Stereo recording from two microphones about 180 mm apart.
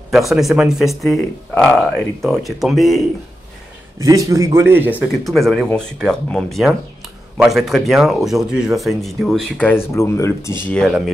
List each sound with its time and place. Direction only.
0.1 s speech: centre (ahead or behind)
4.0 s a man's voice: 20° right (ahead or behind)
5.2 s speech: centre (ahead or behind)
10.7 s speech: centre (ahead or behind)